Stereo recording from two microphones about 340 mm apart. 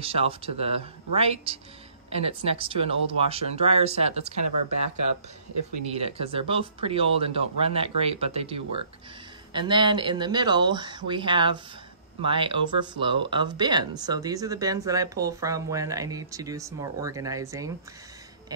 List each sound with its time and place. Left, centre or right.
0.0 s speech: centre
4.4 s speech: right
6.0 s speech: centre